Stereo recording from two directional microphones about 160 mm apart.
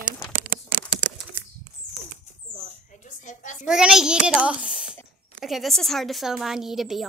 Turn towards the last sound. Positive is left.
turn(degrees=0)  # may be behind; listen again after turning